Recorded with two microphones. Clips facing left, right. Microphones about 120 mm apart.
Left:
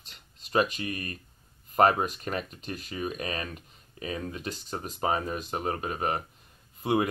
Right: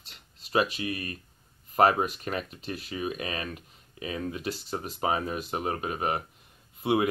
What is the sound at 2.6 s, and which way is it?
Speech, 45° left (ahead or behind).